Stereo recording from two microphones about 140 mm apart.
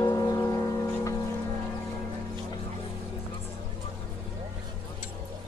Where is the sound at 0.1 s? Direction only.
25° left (ahead or behind).